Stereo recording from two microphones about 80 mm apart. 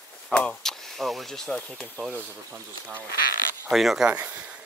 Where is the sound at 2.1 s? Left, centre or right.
Right.